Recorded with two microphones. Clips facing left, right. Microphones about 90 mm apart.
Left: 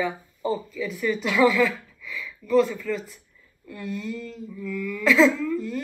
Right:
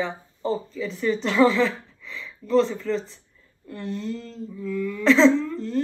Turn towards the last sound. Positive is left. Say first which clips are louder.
# right 4 dB
turn(degrees=-30)  # may be behind; listen again after turning